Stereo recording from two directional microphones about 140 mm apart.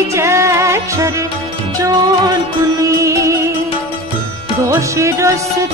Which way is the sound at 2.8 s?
20° right (ahead or behind).